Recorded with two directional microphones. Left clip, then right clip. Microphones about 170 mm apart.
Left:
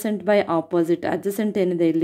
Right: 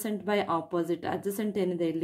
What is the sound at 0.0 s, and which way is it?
Speech, 30° left (ahead or behind).